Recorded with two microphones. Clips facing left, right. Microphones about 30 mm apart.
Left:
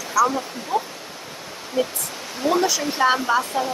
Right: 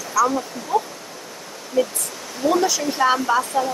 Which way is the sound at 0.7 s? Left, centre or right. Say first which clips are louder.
Right 3 dB; left.